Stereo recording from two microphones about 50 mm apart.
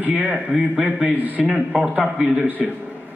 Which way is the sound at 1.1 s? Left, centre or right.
Right.